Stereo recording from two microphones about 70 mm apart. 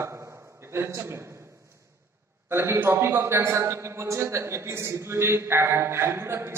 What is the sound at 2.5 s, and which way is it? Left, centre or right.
A man's voice, right.